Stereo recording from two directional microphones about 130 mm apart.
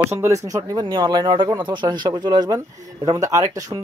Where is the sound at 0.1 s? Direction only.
20° right (ahead or behind).